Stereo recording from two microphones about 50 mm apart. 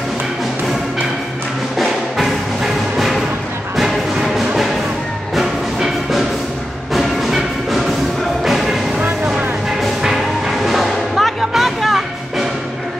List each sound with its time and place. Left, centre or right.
1.8 s music: centre
10.0 s music: centre